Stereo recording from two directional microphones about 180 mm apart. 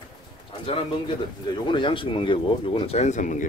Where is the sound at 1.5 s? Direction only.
25° left (ahead or behind); by 3.4 s 45° left (ahead or behind).